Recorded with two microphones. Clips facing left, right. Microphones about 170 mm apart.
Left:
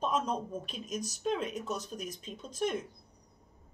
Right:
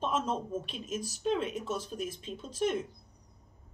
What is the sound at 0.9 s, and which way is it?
Speech, 45° left (ahead or behind).